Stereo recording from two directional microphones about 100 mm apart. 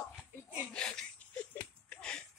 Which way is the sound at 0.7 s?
10° left (ahead or behind).